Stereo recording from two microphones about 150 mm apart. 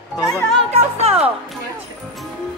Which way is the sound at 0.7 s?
45° right (ahead or behind).